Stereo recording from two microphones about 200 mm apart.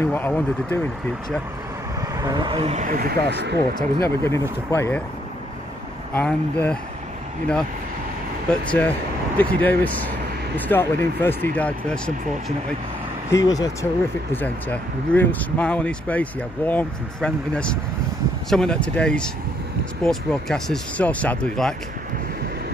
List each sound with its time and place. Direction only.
0.0 s speech: 10° left (ahead or behind)
2.0 s speech: 20° right (ahead or behind); by 3.5 s 50° right (ahead or behind)
3.7 s speech: 15° left (ahead or behind)
6.1 s speech: 5° left (ahead or behind)
8.5 s speech: 5° left (ahead or behind)
13.3 s speech: 15° left (ahead or behind)